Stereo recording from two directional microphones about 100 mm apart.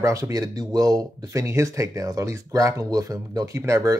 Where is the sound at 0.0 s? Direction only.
30° right (ahead or behind).